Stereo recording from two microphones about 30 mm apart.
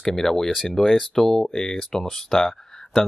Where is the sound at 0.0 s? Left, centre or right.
Centre.